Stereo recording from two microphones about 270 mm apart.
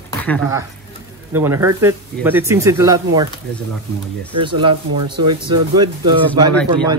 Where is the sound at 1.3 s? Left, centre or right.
Centre.